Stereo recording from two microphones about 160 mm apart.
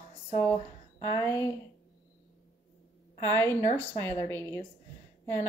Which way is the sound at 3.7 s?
15° left (ahead or behind).